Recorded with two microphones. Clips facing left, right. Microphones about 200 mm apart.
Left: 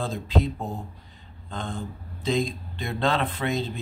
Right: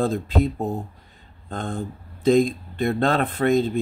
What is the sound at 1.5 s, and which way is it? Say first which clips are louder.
Speech: right 4 dB; 50° right (ahead or behind).